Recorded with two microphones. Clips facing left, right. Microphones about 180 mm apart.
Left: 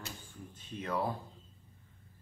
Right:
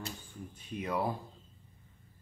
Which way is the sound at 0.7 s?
15° right (ahead or behind).